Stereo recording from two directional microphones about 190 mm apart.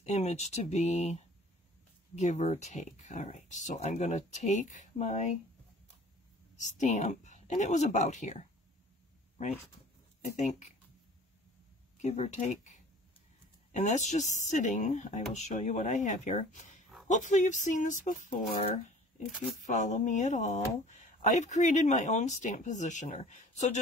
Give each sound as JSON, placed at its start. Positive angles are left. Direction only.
{"t": 0.0, "sound": "speech", "side_deg": 35}
{"t": 2.1, "sound": "speech", "side_deg": 35}
{"t": 6.5, "sound": "speech", "side_deg": 40}
{"t": 10.2, "sound": "speech", "side_deg": 35}
{"t": 12.0, "sound": "speech", "side_deg": 35}